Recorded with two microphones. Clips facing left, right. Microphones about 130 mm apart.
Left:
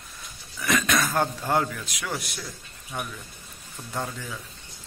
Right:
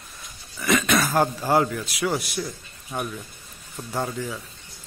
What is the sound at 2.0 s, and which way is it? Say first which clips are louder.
Speech: right 8 dB; 25° right (ahead or behind).